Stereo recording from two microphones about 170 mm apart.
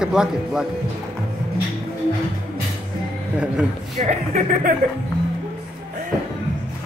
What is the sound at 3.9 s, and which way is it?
Speech, 45° right (ahead or behind).